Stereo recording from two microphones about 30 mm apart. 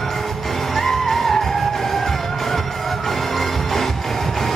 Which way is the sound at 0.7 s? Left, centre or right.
Centre.